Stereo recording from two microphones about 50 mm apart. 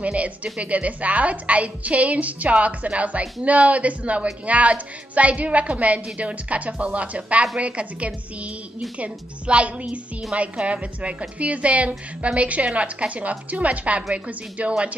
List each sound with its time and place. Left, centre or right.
0.0 s a woman's voice: right